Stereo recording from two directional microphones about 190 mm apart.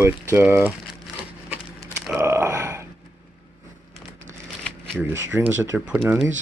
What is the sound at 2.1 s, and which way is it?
Grunt, 15° right (ahead or behind).